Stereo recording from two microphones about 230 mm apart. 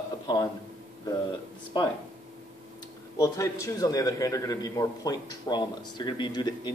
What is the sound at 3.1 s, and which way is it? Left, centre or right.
A man's voice, centre.